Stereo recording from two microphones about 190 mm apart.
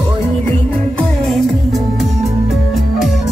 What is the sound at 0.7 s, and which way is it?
Music, 5° left (ahead or behind).